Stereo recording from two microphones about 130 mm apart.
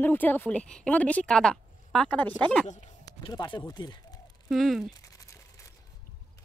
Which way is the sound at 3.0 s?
35° left (ahead or behind).